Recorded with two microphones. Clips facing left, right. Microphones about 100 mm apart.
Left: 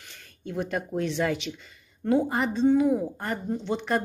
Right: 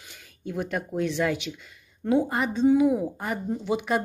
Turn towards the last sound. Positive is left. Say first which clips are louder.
# right 1 dB
turn(degrees=-5)  # may be behind; listen again after turning